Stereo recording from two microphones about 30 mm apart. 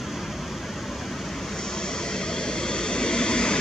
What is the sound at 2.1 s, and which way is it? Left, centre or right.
Vehicle, left.